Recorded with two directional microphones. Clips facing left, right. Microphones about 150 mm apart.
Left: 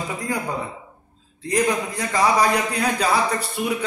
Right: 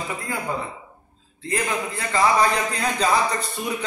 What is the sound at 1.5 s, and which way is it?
A man's voice, 15° left (ahead or behind).